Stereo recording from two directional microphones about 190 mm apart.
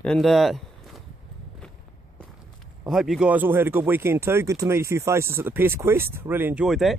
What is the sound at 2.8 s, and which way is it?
Speech, centre (ahead or behind).